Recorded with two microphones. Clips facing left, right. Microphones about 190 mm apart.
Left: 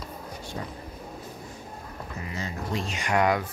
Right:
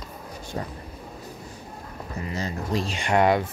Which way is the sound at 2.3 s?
35° right (ahead or behind).